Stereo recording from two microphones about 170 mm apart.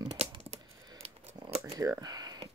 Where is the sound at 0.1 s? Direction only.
40° right (ahead or behind).